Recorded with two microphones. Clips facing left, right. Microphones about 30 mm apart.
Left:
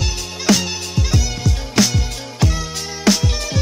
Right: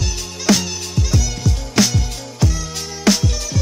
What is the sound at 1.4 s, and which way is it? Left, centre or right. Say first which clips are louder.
Music: even; centre.